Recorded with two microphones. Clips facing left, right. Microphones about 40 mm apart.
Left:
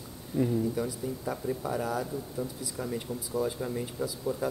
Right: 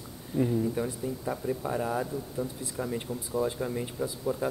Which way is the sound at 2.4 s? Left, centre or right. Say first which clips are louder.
Right 3 dB; centre.